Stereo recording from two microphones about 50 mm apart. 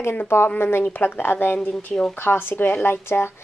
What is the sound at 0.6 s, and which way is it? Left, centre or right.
Speech, left.